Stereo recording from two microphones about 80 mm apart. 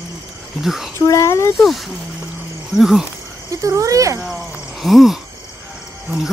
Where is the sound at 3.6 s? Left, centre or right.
Right.